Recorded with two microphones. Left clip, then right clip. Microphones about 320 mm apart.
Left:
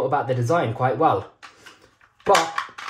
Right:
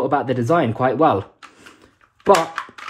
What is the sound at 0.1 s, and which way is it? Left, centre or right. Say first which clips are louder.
Speech: right 3 dB; right.